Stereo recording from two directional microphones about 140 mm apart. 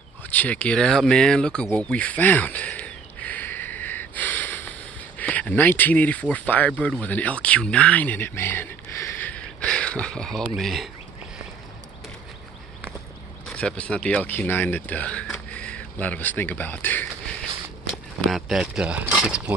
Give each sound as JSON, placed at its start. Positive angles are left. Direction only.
{"t": 0.3, "sound": "speech", "side_deg": 10}
{"t": 13.6, "sound": "speech", "side_deg": 10}
{"t": 18.3, "sound": "speech", "side_deg": 0}